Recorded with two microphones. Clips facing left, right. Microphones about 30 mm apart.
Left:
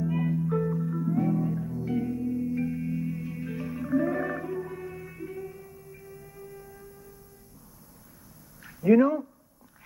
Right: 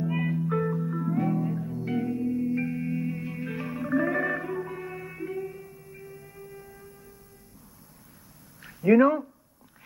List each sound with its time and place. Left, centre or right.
0.0 s music: right
0.7 s music: right
8.8 s speech: right